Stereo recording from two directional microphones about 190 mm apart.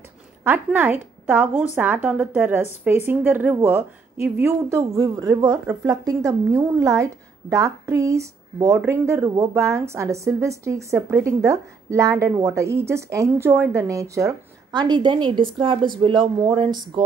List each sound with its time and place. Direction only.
0.4 s a woman's voice: 10° right (ahead or behind); by 17.0 s 25° right (ahead or behind)